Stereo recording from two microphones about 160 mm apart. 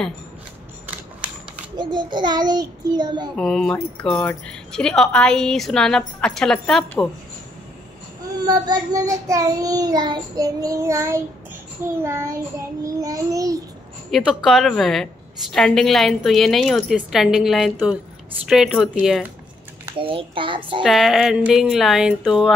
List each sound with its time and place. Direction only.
1.8 s child singing: 30° right (ahead or behind)
3.3 s a woman's voice: centre (ahead or behind)
8.5 s child singing: 25° right (ahead or behind)
14.1 s a woman's voice: centre (ahead or behind)
19.9 s a child's voice: 35° right (ahead or behind)
20.8 s a woman's voice: centre (ahead or behind)